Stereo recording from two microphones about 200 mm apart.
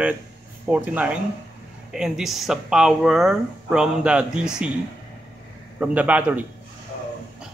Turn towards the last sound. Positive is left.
turn(degrees=-5)  # may be behind; listen again after turning